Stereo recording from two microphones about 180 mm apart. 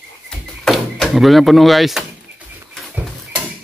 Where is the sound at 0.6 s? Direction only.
Centre (ahead or behind).